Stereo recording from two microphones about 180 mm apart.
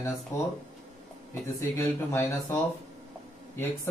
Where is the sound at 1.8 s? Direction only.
15° left (ahead or behind).